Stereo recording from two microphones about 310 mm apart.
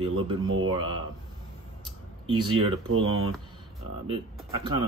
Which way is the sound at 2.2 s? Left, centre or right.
Centre.